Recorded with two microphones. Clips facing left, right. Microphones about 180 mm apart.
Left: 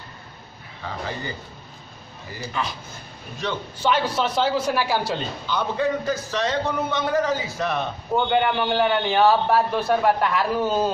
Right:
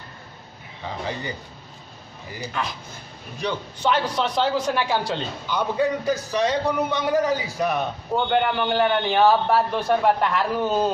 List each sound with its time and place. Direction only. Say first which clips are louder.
0.8 s a man's voice: right 1 dB; 20° right (ahead or behind)
3.8 s a man's voice: even; 5° left (ahead or behind)
5.5 s a man's voice: right 1 dB; 15° right (ahead or behind)
8.1 s a man's voice: left 1 dB; 5° left (ahead or behind)